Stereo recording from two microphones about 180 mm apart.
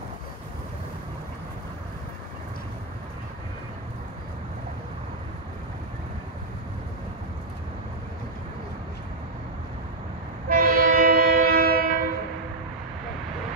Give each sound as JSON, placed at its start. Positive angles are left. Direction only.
{"t": 10.5, "sound": "train", "side_deg": -50}